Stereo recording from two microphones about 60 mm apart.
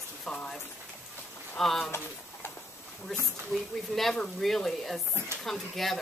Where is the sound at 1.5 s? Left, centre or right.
Centre.